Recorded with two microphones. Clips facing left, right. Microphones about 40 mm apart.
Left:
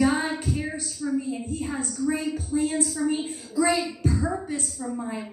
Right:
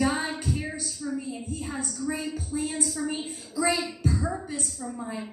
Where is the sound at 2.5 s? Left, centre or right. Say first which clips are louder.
Left 6 dB; centre.